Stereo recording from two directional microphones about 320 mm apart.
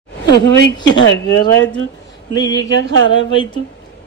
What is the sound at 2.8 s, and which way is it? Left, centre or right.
Speech, right.